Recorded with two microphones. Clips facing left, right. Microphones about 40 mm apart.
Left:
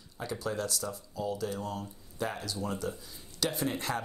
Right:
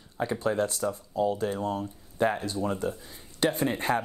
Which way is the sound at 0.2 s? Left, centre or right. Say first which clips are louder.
Right 7 dB; right.